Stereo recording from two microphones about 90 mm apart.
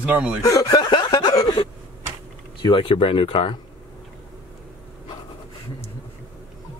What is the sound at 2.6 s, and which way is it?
Speech, 80° left.